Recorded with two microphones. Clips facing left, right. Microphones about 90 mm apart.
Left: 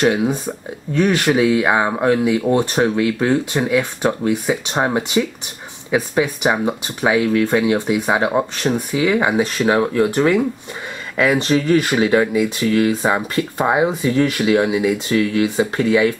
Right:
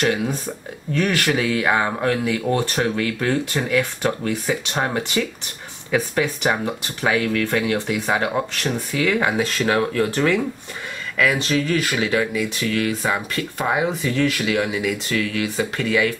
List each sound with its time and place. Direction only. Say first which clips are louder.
0.0 s speech: left 5 dB; 20° left (ahead or behind)
11.1 s speech: left 4 dB; 30° left (ahead or behind)